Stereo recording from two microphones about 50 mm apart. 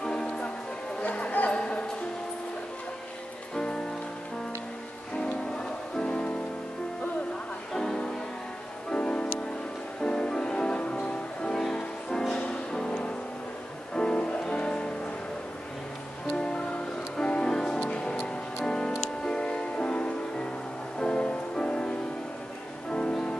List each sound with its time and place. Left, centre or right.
0.0 s music: centre
1.0 s music: left
3.5 s music: centre
5.1 s music: centre
7.7 s music: centre
16.3 s music: centre
17.7 s music: left